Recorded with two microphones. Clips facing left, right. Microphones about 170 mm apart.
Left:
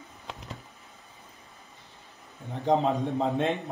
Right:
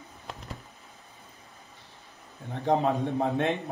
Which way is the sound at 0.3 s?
Centre (ahead or behind).